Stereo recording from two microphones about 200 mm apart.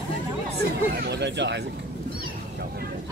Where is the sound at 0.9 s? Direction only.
55° right (ahead or behind).